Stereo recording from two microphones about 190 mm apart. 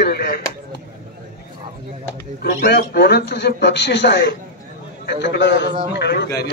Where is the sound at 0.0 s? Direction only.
55° left (ahead or behind).